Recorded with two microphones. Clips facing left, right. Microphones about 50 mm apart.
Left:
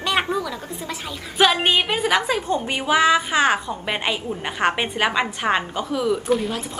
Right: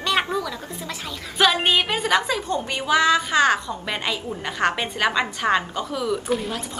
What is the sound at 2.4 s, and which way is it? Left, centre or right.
A woman's voice, centre.